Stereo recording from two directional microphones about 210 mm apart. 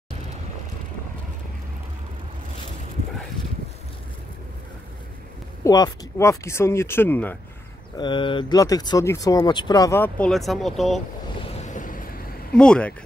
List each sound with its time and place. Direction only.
5.6 s speech: 15° left (ahead or behind)
8.0 s speech: 25° left (ahead or behind); by 11.0 s centre (ahead or behind)
11.5 s vehicle: 35° left (ahead or behind)
12.5 s speech: 5° left (ahead or behind)